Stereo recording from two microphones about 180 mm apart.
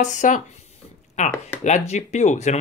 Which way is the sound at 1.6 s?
40° left (ahead or behind).